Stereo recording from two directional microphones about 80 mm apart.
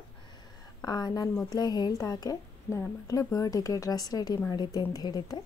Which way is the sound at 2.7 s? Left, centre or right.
Left.